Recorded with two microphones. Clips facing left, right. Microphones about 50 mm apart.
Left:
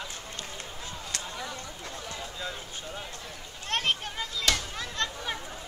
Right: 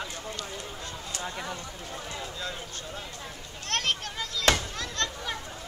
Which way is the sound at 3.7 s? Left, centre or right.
Centre.